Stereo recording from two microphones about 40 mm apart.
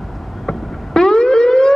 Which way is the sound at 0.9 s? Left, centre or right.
Centre.